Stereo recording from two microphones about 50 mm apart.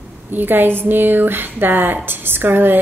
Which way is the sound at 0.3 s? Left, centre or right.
Right.